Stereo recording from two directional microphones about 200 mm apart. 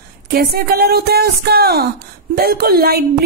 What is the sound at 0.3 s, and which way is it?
A woman's voice, 50° right (ahead or behind).